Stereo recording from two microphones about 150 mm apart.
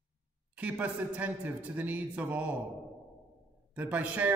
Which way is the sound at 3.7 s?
10° right (ahead or behind).